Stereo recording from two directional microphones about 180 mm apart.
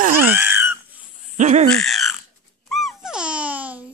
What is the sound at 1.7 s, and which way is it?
Frog, centre (ahead or behind).